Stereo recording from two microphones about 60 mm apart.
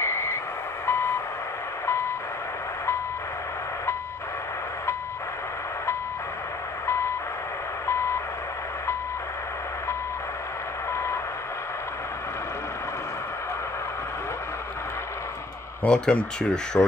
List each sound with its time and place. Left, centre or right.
0.0 s vehicle: left
0.8 s reversing beeps: left
6.9 s vehicle: left
10.9 s reversing beeps: left
15.8 s speech: centre